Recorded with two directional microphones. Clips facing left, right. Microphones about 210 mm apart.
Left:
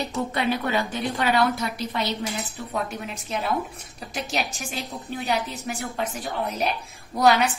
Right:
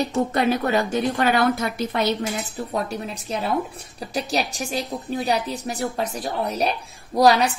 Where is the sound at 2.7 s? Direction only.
35° right (ahead or behind).